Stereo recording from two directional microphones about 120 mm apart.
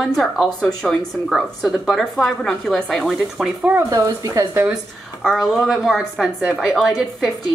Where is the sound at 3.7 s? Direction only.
25° right (ahead or behind).